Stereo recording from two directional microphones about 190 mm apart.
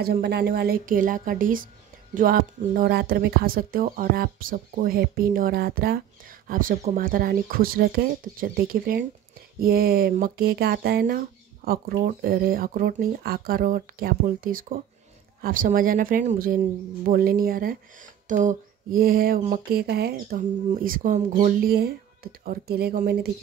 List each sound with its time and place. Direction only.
0.0 s speech: 55° right (ahead or behind)